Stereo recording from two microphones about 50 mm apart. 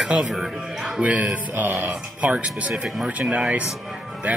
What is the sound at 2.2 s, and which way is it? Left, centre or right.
Speech, right.